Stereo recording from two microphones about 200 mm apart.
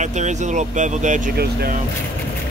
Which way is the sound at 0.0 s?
35° right (ahead or behind).